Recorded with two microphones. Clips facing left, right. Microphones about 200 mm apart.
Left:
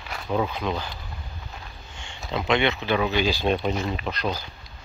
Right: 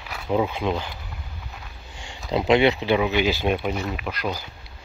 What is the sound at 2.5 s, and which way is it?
Speech, 35° right (ahead or behind).